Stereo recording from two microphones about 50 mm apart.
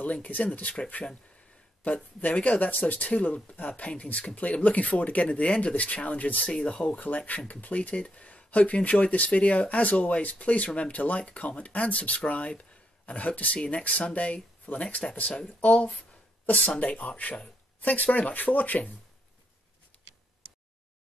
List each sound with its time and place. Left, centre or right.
0.0 s speech: left
2.2 s speech: left